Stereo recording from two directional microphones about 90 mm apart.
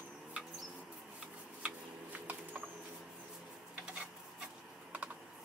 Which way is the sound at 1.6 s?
20° right (ahead or behind).